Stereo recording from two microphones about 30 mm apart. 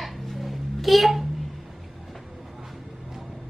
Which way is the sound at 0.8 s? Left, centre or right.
Centre.